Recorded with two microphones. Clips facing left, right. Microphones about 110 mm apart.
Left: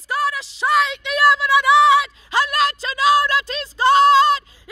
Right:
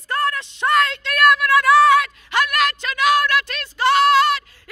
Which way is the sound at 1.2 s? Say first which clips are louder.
Right 1 dB; 25° left (ahead or behind).